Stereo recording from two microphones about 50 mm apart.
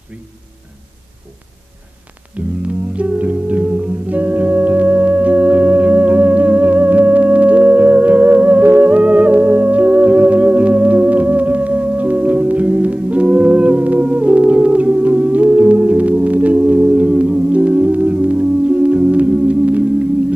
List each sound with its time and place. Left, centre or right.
2.3 s music: right